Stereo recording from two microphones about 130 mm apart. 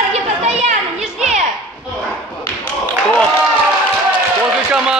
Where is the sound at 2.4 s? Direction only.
10° left (ahead or behind).